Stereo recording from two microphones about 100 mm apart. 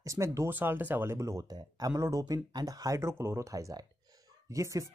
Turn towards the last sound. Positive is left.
turn(degrees=-35)  # may be behind; listen again after turning